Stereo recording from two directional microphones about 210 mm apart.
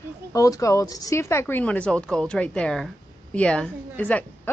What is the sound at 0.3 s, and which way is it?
A woman's voice, 15° left (ahead or behind).